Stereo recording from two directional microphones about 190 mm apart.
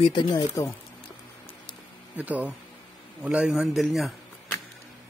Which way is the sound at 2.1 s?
10° right (ahead or behind).